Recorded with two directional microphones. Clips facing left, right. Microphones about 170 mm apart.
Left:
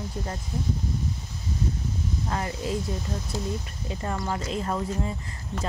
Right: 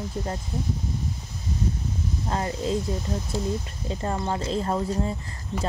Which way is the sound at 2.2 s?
30° right (ahead or behind).